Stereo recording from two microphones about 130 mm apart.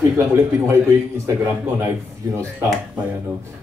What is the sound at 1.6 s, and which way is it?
Speech, 20° right (ahead or behind).